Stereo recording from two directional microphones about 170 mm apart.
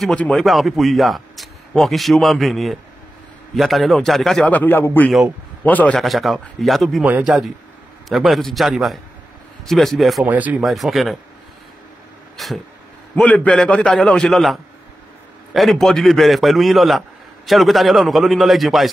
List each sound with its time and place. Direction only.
0.0 s a man's voice: 5° left (ahead or behind)
12.4 s speech: centre (ahead or behind)